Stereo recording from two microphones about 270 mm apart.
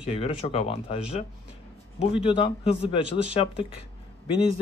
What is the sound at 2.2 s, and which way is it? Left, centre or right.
A man's voice, left.